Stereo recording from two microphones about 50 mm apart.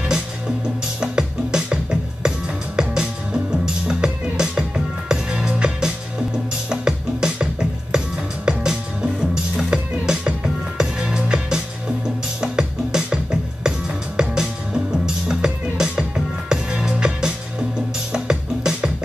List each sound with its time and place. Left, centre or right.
1.0 s music: centre
8.5 s music: centre